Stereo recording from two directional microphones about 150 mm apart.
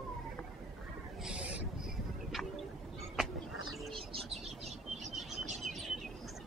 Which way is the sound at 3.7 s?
Centre (ahead or behind).